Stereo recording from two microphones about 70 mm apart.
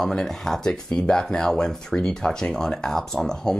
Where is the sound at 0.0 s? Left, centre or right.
Centre.